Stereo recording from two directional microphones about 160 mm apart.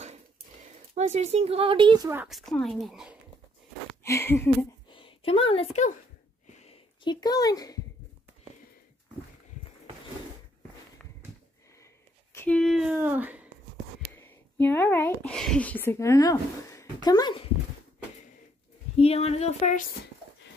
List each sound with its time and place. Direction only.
0.9 s speech: 45° right (ahead or behind)
2.2 s speech: centre (ahead or behind)
4.0 s a sound: 15° left (ahead or behind)
4.8 s a woman's voice: 30° left (ahead or behind)
6.4 s a sound: 45° left (ahead or behind)
7.1 s speech: 25° left (ahead or behind)
12.4 s speech: 5° left (ahead or behind)
12.9 s speech: 10° right (ahead or behind)
14.1 s speech: 15° left (ahead or behind)
18.9 s speech: 40° left (ahead or behind)